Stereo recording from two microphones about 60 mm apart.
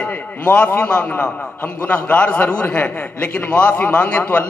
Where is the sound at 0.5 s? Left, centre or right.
Left.